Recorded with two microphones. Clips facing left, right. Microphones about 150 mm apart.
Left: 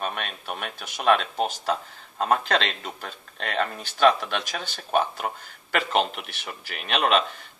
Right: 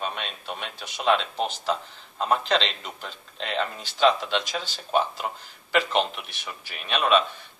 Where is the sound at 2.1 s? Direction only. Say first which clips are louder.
Left 1 dB; 50° left (ahead or behind).